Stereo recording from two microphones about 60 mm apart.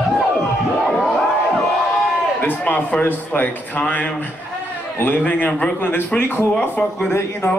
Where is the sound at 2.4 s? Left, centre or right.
Left.